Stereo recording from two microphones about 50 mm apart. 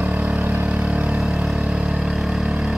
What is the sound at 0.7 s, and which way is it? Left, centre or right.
Vehicle, right.